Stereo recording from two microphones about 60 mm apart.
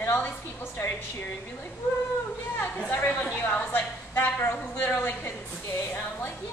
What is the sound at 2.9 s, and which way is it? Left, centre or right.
A woman's voice, left.